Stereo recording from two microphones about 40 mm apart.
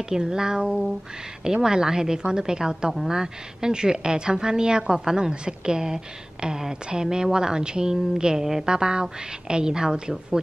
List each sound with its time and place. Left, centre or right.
0.1 s a woman's voice: centre